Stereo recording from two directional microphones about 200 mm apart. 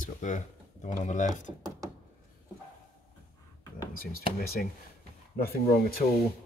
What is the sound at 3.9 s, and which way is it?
Speech, 45° left (ahead or behind).